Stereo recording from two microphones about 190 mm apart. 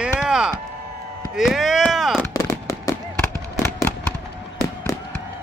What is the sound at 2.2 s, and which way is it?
Fireworks, 15° left (ahead or behind).